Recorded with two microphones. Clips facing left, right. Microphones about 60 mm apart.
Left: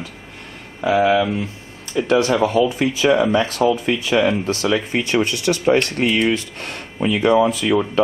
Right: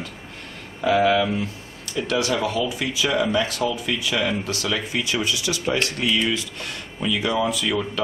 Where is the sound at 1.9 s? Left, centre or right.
Left.